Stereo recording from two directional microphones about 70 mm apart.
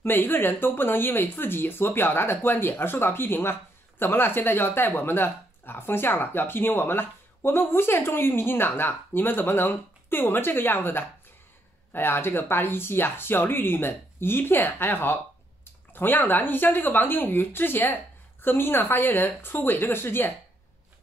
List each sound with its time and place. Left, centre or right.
0.0 s speech: left